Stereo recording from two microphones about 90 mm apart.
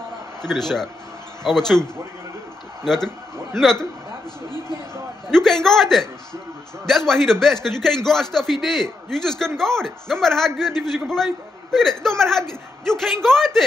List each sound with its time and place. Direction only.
0.4 s a man's voice: 5° left (ahead or behind)
5.3 s a man's voice: 5° left (ahead or behind)